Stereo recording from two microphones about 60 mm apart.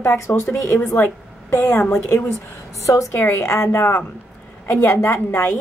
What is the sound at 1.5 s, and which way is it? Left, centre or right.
Speech, left.